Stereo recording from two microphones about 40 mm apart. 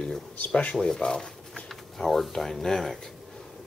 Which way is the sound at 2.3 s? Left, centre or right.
Centre.